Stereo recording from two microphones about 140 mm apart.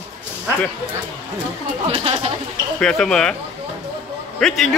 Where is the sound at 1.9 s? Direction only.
45° right (ahead or behind).